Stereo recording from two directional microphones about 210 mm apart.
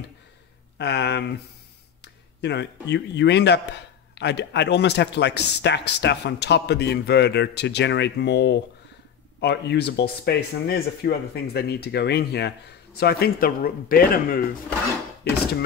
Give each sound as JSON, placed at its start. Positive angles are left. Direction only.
{"t": 0.7, "sound": "speech", "side_deg": 55}